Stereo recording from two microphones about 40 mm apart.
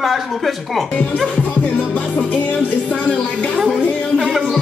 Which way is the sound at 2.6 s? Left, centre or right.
Left.